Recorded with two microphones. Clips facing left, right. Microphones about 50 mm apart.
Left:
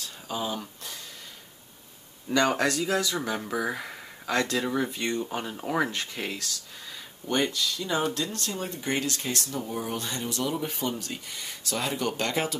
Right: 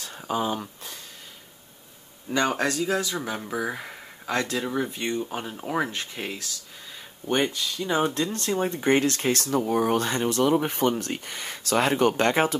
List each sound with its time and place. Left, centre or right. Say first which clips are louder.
0.0 s a sound: right 5 dB; right
2.3 s speech: even; right
3.3 s speech: even; centre
4.3 s speech: even; right
4.6 s speech: even; centre
5.2 s speech: even; centre
6.1 s speech: even; right
12.1 s speech: right 6 dB; right